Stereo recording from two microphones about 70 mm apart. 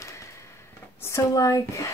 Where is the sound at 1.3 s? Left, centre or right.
Left.